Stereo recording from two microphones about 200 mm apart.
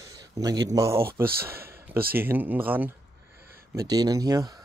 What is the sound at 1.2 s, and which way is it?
Speech, 50° right (ahead or behind).